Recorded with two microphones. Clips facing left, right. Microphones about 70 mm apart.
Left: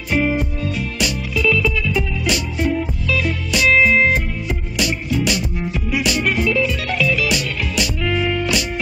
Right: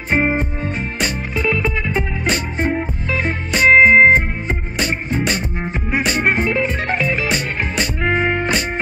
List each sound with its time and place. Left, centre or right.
0.1 s music: right